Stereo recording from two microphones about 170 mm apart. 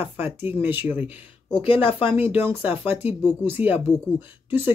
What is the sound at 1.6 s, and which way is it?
Speech, 30° left (ahead or behind).